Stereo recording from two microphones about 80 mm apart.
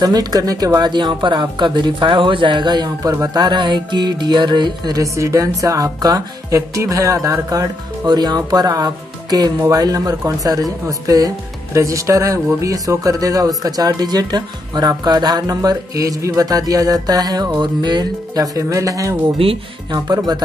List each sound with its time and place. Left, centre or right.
0.0 s speech: right
0.7 s speech: right
3.0 s speech: right
3.3 s speech: right
4.9 s speech: right
8.1 s speech: right
17.6 s speech: right
19.9 s speech: right